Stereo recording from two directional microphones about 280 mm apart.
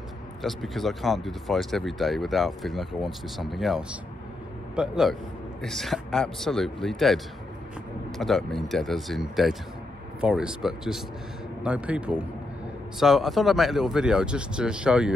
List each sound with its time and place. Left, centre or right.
0.4 s speech: centre
8.2 s speech: centre